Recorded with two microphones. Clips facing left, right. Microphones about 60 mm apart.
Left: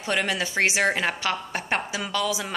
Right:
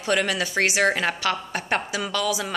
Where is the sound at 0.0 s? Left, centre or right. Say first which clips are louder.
Right 2 dB; centre.